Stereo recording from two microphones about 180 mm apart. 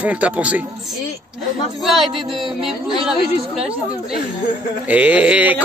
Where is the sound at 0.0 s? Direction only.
5° right (ahead or behind).